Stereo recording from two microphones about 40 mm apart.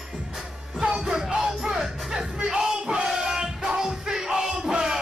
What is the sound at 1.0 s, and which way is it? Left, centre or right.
Music, centre.